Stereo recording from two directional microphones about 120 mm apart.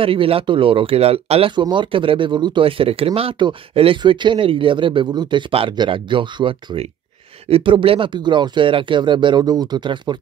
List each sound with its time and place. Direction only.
0.0 s speech: 50° right (ahead or behind)
1.5 s speech: 40° right (ahead or behind)